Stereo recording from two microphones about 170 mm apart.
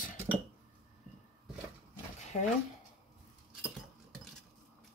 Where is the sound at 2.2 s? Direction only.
45° left (ahead or behind).